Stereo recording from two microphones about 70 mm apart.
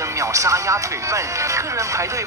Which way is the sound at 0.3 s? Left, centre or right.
Right.